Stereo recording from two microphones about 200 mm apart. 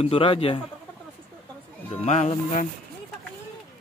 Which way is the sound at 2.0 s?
35° left (ahead or behind).